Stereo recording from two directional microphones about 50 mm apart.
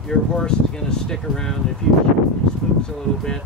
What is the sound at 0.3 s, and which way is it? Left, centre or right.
Speech, centre.